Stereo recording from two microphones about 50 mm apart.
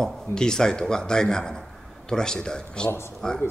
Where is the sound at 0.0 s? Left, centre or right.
Centre.